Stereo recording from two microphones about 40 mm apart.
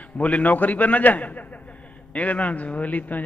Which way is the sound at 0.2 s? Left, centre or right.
Left.